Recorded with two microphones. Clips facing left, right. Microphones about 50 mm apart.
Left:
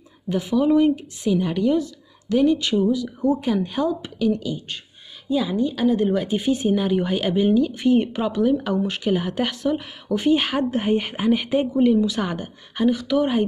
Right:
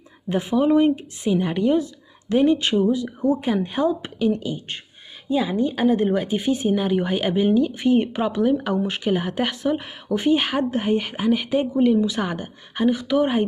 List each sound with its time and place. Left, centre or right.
0.3 s speech: right
6.2 s speech: centre
11.8 s speech: centre